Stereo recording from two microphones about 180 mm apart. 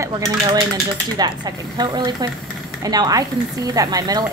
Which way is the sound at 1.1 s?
25° right (ahead or behind).